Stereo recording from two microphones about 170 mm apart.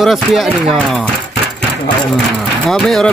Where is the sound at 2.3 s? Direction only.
Centre (ahead or behind).